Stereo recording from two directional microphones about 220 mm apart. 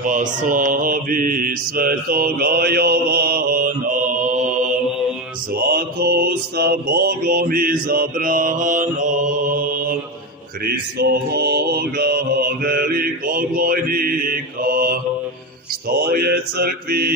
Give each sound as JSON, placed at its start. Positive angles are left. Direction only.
{"t": 0.0, "sound": "mantra", "side_deg": -35}
{"t": 5.5, "sound": "mantra", "side_deg": -45}
{"t": 16.1, "sound": "mantra", "side_deg": -45}